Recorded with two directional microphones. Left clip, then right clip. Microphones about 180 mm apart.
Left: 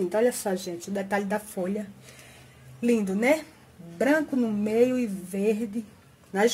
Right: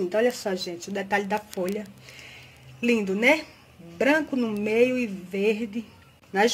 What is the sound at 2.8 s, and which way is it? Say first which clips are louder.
Speech: right 2 dB; centre (ahead or behind).